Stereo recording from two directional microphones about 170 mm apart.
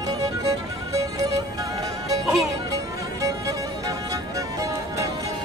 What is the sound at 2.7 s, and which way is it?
Music, 20° right (ahead or behind).